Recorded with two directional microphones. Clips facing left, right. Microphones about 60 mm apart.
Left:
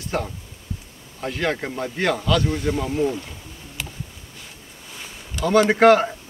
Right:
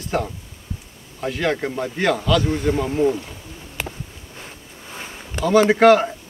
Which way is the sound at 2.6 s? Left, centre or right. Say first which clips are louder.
Right 3 dB; centre.